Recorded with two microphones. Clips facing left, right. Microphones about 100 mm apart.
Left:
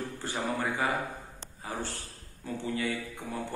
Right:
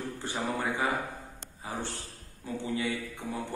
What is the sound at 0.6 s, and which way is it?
A man's voice, 20° right (ahead or behind).